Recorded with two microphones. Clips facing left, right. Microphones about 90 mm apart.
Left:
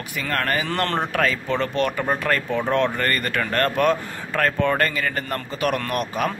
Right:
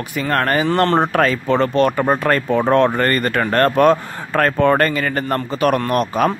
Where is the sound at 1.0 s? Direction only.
40° right (ahead or behind).